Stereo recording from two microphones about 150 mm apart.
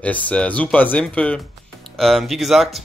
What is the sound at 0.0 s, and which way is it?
Speech, 10° left (ahead or behind).